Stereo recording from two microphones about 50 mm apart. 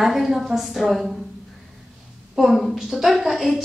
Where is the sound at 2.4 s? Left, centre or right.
Centre.